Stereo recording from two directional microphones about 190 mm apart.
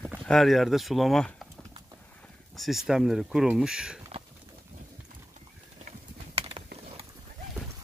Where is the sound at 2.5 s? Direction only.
Centre (ahead or behind).